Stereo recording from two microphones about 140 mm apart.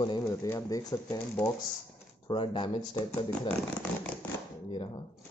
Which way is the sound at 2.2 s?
35° left (ahead or behind).